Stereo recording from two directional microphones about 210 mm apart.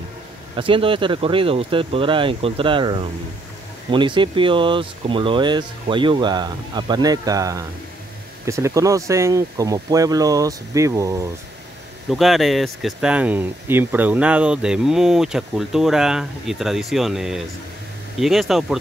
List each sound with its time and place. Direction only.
0.6 s speech: 25° right (ahead or behind)
12.1 s speech: centre (ahead or behind)